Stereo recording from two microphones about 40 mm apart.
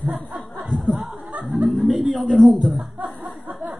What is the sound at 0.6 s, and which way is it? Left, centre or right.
Speech, centre.